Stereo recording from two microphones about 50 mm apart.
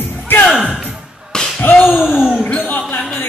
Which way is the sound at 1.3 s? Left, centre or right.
Centre.